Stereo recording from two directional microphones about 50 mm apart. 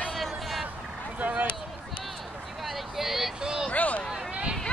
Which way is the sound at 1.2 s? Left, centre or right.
Right.